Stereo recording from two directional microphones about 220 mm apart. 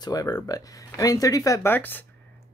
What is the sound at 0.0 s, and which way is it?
Speech, 15° left (ahead or behind).